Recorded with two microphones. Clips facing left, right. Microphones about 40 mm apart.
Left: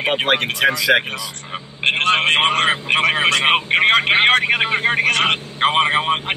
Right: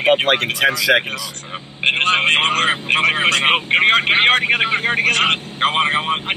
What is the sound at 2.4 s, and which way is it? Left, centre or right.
Speech, centre.